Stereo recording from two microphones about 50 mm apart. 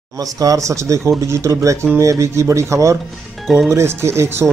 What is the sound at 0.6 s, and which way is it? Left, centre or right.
Speech, right.